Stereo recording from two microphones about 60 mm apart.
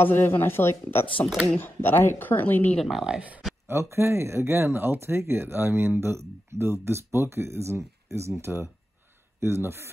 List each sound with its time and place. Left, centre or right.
0.0 s speech: left
2.8 s speech: centre
3.2 s speech: right
3.6 s speech: right